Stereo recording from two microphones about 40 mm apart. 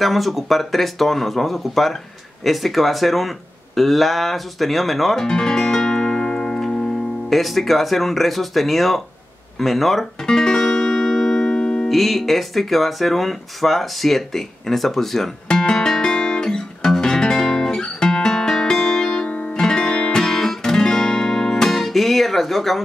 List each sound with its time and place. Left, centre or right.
0.0 s speech: centre
5.2 s music: centre
6.6 s speech: centre
10.2 s music: centre
11.9 s speech: centre
15.4 s music: left
15.8 s guitar: centre
19.2 s guitar: left
19.6 s guitar: left; by 22.8 s centre